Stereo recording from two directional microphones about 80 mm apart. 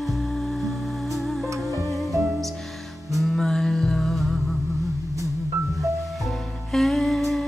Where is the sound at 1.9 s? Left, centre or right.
Centre.